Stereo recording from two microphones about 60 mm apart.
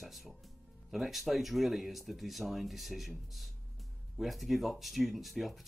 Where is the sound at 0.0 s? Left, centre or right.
Centre.